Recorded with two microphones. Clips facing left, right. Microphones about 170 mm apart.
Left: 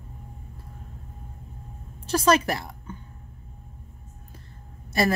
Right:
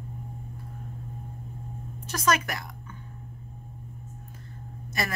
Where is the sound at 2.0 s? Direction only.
30° left (ahead or behind).